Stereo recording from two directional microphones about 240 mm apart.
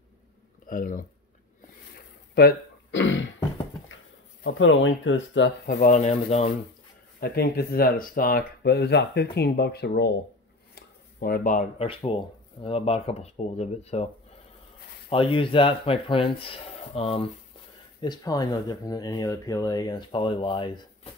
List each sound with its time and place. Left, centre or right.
0.7 s speech: left
2.3 s throat clearing: left
4.5 s speech: left
7.2 s speech: left
10.7 s a sound: left
11.9 s speech: left
15.0 s speech: left